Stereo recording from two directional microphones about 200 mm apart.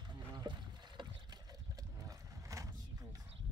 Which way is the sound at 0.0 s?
20° right (ahead or behind).